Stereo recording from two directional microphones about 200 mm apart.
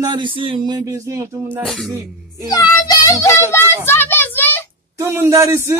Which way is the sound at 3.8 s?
10° left (ahead or behind).